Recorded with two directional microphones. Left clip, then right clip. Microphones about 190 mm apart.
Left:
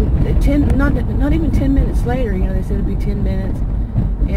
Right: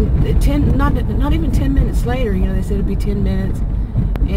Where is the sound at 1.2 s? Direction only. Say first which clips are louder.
Left 2 dB; 25° right (ahead or behind).